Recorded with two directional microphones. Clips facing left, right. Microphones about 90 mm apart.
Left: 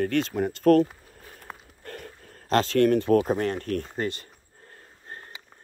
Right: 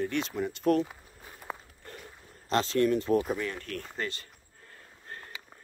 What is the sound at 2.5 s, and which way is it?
Speech, 60° left (ahead or behind).